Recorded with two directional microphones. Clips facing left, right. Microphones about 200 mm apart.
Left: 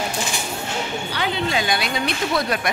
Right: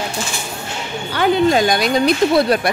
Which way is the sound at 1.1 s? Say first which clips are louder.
Right 10 dB; 50° right (ahead or behind).